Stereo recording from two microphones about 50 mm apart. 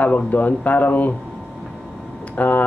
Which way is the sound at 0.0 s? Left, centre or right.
Left.